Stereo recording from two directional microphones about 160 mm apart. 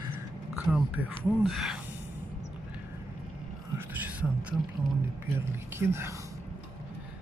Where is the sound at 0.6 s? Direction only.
5° right (ahead or behind).